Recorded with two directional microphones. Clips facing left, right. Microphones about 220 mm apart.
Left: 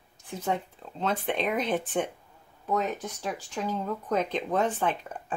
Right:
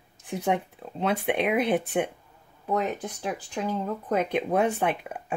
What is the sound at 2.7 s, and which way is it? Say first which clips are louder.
Speech: right 2 dB; 15° right (ahead or behind).